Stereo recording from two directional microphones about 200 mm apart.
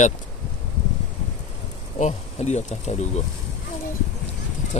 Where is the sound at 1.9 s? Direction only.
35° left (ahead or behind).